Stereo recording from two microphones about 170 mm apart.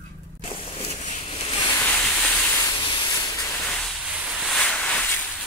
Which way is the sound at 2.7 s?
25° left (ahead or behind).